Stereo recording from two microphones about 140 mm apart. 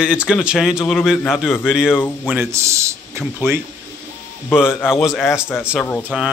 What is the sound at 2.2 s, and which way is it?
A man's voice, 15° right (ahead or behind).